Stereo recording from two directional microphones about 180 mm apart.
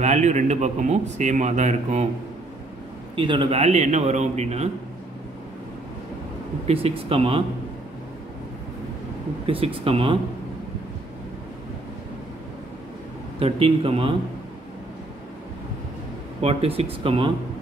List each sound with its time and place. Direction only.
0.0 s a man's voice: 40° right (ahead or behind)
3.2 s a man's voice: 30° right (ahead or behind)
6.7 s a man's voice: 30° right (ahead or behind)
9.5 s a man's voice: 30° right (ahead or behind)
13.4 s a man's voice: 30° right (ahead or behind)
16.3 s a man's voice: 35° right (ahead or behind)